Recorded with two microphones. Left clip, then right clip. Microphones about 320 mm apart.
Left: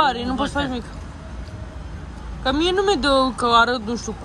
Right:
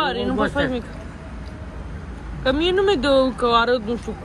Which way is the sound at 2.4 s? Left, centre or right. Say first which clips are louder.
Right 1 dB; centre.